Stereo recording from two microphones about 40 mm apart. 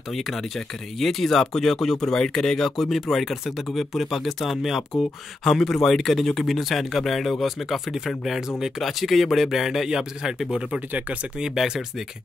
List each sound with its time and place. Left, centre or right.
0.9 s speech: centre
2.8 s speech: centre
5.4 s speech: centre
8.3 s speech: centre
10.9 s speech: right
11.5 s speech: centre